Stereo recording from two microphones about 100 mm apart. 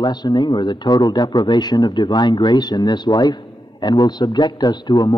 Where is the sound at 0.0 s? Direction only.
45° left (ahead or behind).